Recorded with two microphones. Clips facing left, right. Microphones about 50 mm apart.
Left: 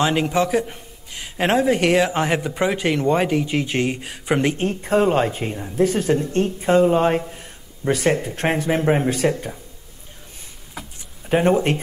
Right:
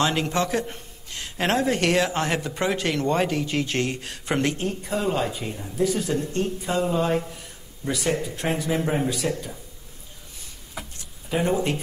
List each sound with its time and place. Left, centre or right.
0.0 s a man's voice: centre
4.6 s a man's voice: left
11.2 s speech: left